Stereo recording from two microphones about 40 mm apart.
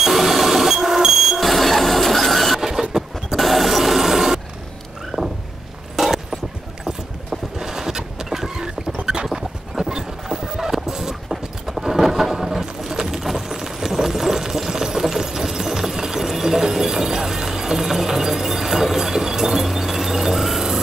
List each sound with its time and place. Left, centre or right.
0.0 s vehicle: centre
2.6 s vehicle: centre
3.3 s vehicle: centre
5.9 s clip-clop: centre
7.5 s boat: centre
9.0 s a sound: centre
10.2 s horse: centre
13.1 s a sound: centre